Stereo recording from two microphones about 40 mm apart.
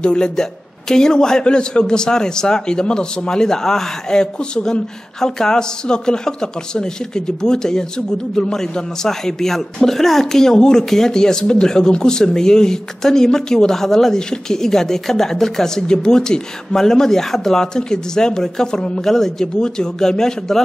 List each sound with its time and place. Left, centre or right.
0.0 s a man's voice: left